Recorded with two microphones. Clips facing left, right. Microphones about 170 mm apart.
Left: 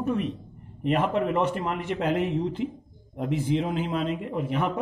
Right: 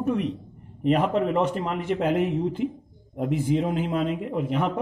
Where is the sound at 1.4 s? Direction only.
40° right (ahead or behind).